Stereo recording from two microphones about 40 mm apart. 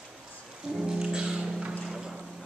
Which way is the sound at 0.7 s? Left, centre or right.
Centre.